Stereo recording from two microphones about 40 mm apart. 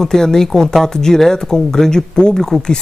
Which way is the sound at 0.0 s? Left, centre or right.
Centre.